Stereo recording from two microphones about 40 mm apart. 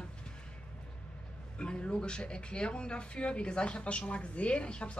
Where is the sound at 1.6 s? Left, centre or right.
Left.